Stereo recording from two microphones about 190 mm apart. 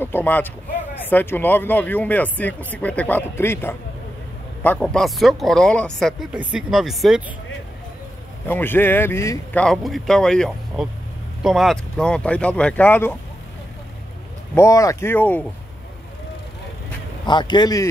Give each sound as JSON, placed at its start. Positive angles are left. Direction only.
{"t": 0.0, "sound": "speech", "side_deg": 10}
{"t": 4.7, "sound": "speech", "side_deg": 0}
{"t": 8.5, "sound": "speech", "side_deg": 10}
{"t": 14.5, "sound": "speech", "side_deg": 15}
{"t": 17.3, "sound": "a man's voice", "side_deg": 25}